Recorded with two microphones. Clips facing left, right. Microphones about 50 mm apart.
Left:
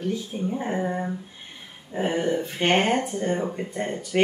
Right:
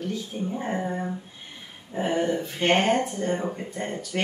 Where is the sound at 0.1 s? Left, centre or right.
Centre.